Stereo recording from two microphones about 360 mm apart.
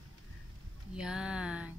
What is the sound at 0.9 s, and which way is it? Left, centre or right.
Speech, centre.